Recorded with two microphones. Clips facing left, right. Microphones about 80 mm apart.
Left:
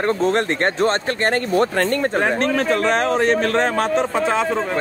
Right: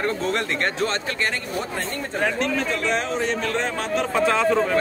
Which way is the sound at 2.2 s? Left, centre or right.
Left.